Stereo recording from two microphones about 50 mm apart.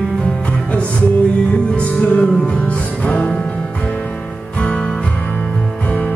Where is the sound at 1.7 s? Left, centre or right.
Left.